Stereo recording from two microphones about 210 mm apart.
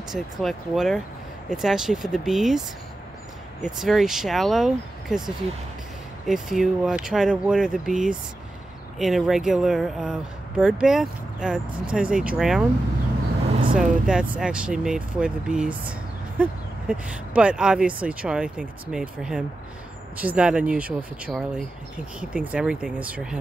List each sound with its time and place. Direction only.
0.1 s speech: centre (ahead or behind)
3.6 s speech: centre (ahead or behind)
13.7 s speech: 5° right (ahead or behind)